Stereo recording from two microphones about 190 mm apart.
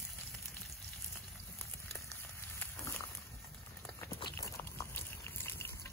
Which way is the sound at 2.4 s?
10° left (ahead or behind).